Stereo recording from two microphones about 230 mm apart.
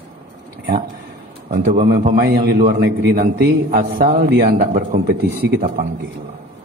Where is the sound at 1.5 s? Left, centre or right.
Right.